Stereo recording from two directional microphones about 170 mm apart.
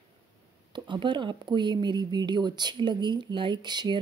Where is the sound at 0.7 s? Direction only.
30° right (ahead or behind).